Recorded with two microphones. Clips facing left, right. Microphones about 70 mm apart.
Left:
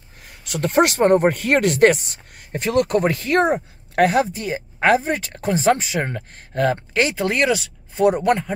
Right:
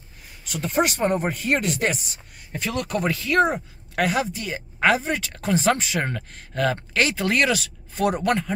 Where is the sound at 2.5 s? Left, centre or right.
Left.